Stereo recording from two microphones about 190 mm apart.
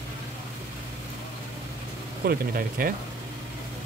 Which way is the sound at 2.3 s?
50° right (ahead or behind).